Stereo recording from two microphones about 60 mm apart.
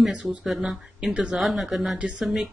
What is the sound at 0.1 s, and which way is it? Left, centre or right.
Speech, centre.